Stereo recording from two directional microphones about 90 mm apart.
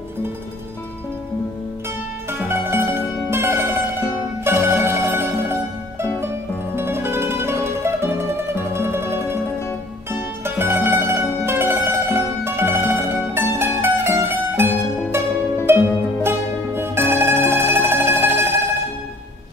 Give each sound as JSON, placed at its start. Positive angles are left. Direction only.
{"t": 2.3, "sound": "mandolin", "side_deg": -25}
{"t": 4.5, "sound": "music", "side_deg": -25}
{"t": 10.1, "sound": "mandolin", "side_deg": -25}
{"t": 15.6, "sound": "music", "side_deg": -25}